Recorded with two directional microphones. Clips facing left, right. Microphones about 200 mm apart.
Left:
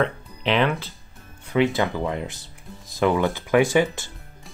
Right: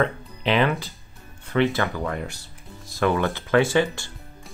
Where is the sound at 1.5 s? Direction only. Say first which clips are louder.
Left 1 dB; 15° left (ahead or behind).